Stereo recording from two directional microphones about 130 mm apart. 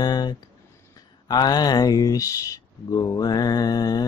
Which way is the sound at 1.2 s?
30° left (ahead or behind).